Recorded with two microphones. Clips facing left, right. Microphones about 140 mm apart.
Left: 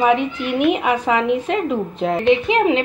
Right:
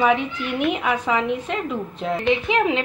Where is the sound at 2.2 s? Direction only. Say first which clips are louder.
Left 4 dB; 5° left (ahead or behind).